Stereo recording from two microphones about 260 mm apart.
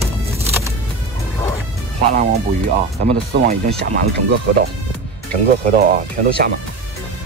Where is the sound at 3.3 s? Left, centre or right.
Right.